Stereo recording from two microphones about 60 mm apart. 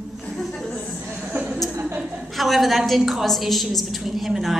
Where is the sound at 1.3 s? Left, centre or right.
Right.